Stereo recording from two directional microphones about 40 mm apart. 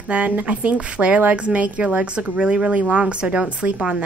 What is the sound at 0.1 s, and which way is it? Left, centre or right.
A woman's voice, right.